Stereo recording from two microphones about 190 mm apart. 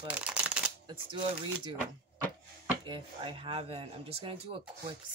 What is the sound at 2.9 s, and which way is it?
Speech, 25° right (ahead or behind).